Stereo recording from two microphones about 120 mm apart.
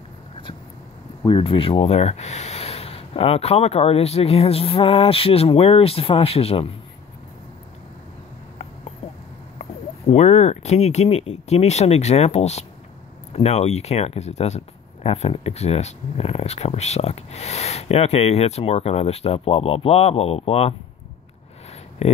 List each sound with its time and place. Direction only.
1.2 s speech: 45° left (ahead or behind)
9.6 s speech: 60° left (ahead or behind)
22.0 s speech: 60° left (ahead or behind)